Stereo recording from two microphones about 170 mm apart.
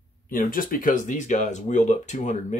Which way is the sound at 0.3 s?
55° left (ahead or behind).